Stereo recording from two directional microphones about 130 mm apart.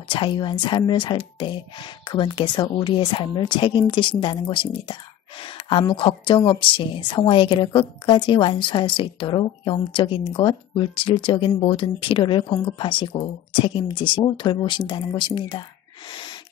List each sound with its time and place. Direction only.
0.1 s a woman's voice: 40° left (ahead or behind)
16.1 s wheeze: 35° left (ahead or behind)